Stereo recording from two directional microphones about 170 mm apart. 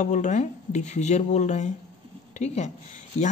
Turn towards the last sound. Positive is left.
turn(degrees=45)  # may be behind; listen again after turning